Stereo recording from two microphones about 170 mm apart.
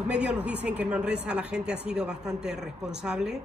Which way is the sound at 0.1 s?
5° right (ahead or behind).